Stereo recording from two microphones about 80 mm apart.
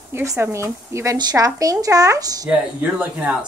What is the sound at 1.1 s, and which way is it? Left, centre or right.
Speech, right.